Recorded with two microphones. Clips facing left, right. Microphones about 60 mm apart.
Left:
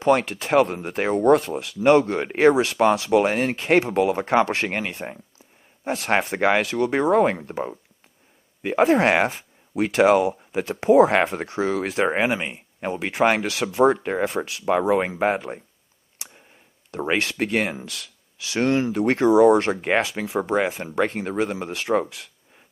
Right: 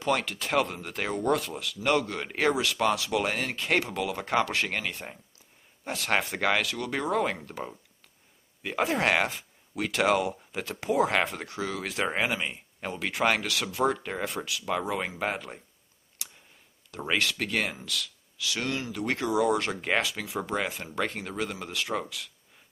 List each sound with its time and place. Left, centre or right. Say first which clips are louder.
0.0 s speech: left 8 dB; left
16.2 s tick: left 2 dB; left
16.9 s speech: left 5 dB; left